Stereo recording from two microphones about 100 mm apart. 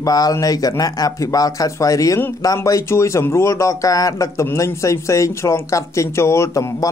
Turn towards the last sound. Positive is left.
turn(degrees=30)  # may be behind; listen again after turning